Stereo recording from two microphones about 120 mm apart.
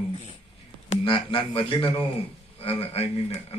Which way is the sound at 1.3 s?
45° left (ahead or behind).